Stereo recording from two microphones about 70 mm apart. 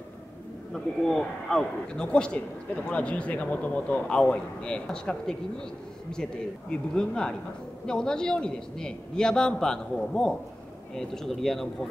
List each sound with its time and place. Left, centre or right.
0.7 s a man's voice: centre
6.7 s a man's voice: centre